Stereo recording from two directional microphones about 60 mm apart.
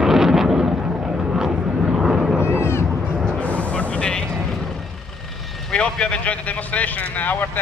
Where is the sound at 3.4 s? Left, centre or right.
Left.